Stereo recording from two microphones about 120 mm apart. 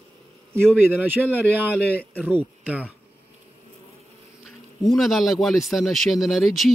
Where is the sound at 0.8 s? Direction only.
15° right (ahead or behind).